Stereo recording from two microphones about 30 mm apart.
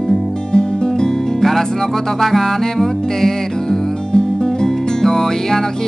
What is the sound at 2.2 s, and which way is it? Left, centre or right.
Music, centre.